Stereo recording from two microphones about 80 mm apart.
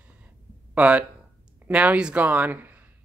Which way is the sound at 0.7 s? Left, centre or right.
Centre.